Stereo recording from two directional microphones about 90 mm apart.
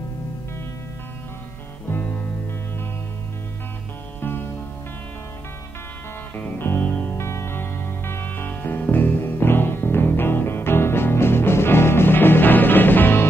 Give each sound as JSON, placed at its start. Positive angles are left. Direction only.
{"t": 1.9, "sound": "music", "side_deg": 20}
{"t": 4.2, "sound": "music", "side_deg": 25}
{"t": 6.3, "sound": "music", "side_deg": 25}
{"t": 7.2, "sound": "music", "side_deg": 30}